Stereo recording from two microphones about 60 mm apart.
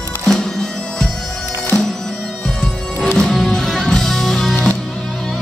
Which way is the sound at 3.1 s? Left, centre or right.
Centre.